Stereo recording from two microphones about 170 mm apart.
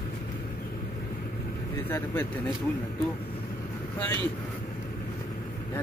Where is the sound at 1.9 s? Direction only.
15° left (ahead or behind).